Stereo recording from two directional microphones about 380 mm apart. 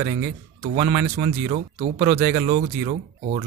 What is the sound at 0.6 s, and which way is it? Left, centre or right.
Speech, centre.